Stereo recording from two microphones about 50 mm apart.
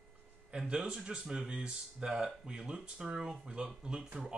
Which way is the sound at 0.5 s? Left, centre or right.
Centre.